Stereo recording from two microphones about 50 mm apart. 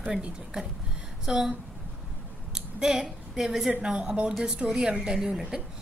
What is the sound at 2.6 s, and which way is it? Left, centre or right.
A woman's voice, centre.